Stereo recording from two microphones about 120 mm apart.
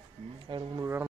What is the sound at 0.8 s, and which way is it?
Speech, 20° right (ahead or behind).